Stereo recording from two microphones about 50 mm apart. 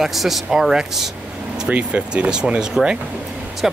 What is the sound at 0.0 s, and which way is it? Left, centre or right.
Speech, centre.